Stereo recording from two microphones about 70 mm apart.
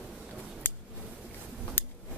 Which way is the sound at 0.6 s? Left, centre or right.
Left.